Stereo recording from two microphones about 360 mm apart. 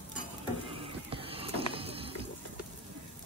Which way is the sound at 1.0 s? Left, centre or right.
Centre.